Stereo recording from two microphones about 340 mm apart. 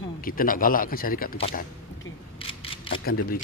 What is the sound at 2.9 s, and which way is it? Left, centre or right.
Camera, centre.